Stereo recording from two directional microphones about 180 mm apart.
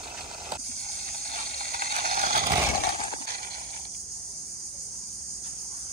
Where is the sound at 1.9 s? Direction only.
50° right (ahead or behind).